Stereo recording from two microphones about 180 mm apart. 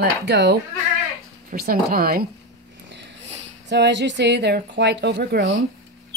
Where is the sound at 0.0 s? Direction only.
65° right (ahead or behind).